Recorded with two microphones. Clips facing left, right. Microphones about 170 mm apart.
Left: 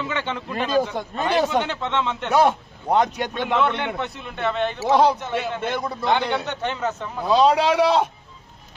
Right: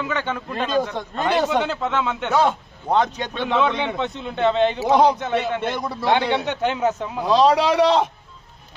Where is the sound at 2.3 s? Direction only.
15° left (ahead or behind).